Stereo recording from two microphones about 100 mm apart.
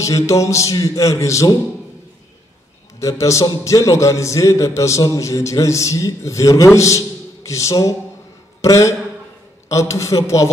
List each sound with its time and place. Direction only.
0.0 s a man's voice: 30° left (ahead or behind)
3.0 s a man's voice: 30° left (ahead or behind)